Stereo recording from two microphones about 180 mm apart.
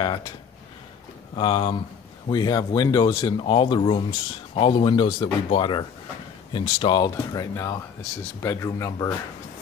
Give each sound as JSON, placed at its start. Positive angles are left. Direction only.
{"t": 0.0, "sound": "speech", "side_deg": 25}
{"t": 1.3, "sound": "speech", "side_deg": 25}